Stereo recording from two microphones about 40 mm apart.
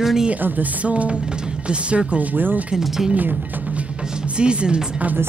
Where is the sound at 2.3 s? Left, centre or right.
Right.